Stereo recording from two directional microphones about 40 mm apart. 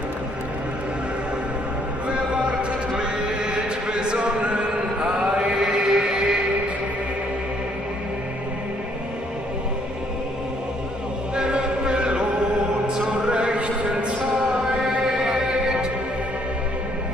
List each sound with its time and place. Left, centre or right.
2.0 s music: right
2.9 s chant: right
11.3 s music: right
13.1 s a sound: right
14.8 s music: right